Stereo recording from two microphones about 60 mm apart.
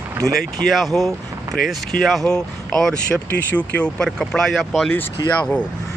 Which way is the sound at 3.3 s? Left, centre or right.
Left.